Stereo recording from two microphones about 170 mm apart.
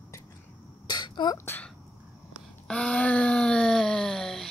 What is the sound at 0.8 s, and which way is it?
Throat clearing, 25° left (ahead or behind).